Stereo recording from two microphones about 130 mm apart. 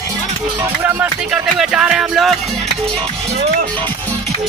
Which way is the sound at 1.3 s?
Centre (ahead or behind).